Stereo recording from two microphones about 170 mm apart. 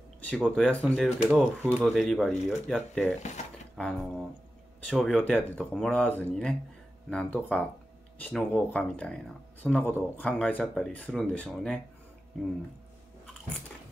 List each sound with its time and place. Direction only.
0.5 s speech: 5° left (ahead or behind)
1.3 s speech: 10° right (ahead or behind)
3.2 s speech: 40° left (ahead or behind)
3.7 s speech: centre (ahead or behind)